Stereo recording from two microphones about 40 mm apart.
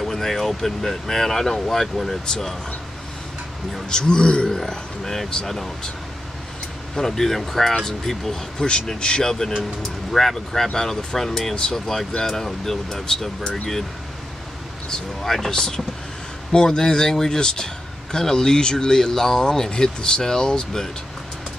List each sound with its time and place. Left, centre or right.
0.0 s speech: centre
3.9 s speech: centre
4.5 s speech: centre
7.0 s speech: centre
8.5 s speech: left
15.2 s speech: centre
15.5 s speech: centre